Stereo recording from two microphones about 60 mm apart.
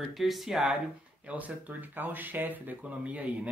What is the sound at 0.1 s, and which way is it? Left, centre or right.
Speech, centre.